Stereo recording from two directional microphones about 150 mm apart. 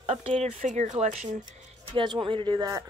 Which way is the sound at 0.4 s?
55° right (ahead or behind).